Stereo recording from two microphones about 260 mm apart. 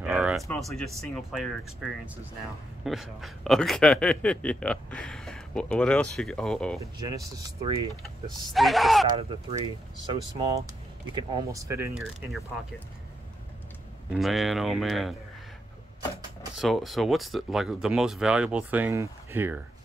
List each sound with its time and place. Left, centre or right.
0.0 s a sound: centre
0.5 s a man's voice: centre
6.8 s speech: centre
8.5 s a man's voice: centre
9.1 s speech: right; by 12.8 s centre
14.1 s a man's voice: centre
16.5 s a man's voice: centre